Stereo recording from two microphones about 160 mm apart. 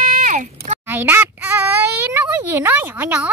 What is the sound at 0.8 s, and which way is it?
A child's voice, 15° right (ahead or behind).